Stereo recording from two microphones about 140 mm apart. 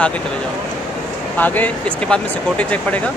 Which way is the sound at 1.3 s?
10° left (ahead or behind).